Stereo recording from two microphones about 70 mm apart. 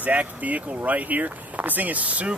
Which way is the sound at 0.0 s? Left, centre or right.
Right.